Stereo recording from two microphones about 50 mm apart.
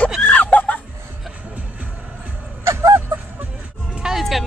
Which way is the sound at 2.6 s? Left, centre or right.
Right.